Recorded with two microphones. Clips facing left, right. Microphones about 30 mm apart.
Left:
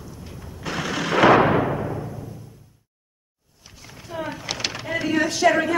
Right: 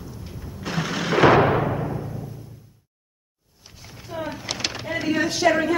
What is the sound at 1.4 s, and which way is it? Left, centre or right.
Timpani, centre.